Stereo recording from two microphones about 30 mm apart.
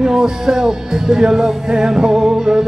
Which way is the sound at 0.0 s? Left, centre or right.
Right.